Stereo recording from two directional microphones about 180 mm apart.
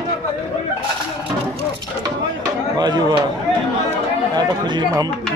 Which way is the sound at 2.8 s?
20° right (ahead or behind).